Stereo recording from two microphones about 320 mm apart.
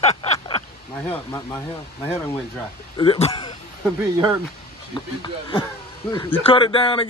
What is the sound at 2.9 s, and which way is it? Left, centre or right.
Speech, centre.